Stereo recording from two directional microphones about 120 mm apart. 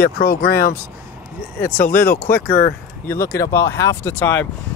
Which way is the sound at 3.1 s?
20° left (ahead or behind).